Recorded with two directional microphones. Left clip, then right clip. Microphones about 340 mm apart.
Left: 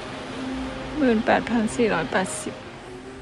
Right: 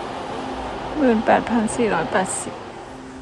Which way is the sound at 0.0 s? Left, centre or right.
Right.